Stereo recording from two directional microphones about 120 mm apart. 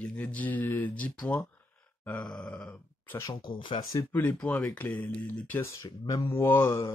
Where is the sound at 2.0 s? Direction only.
10° left (ahead or behind).